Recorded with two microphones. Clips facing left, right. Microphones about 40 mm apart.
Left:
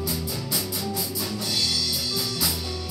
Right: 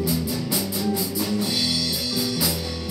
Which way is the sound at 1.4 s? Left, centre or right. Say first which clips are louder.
Right 3 dB; centre.